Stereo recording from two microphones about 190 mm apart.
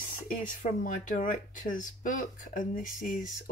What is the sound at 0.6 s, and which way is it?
Speech, 45° left (ahead or behind).